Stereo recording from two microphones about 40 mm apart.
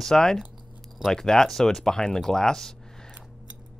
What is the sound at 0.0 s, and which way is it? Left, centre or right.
Speech, centre.